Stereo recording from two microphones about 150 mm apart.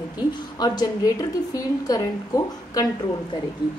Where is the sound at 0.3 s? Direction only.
25° left (ahead or behind).